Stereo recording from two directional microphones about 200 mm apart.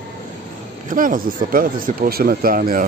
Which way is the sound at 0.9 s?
45° right (ahead or behind).